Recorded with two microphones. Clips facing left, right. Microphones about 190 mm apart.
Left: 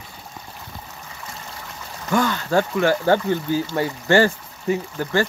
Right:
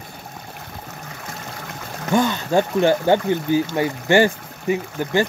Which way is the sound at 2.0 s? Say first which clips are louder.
Right 2 dB; 20° right (ahead or behind).